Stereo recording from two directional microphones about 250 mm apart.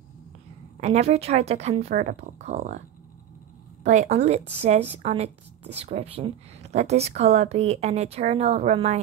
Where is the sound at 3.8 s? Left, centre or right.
Right.